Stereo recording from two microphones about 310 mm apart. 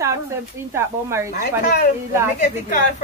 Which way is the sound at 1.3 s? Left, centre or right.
Left.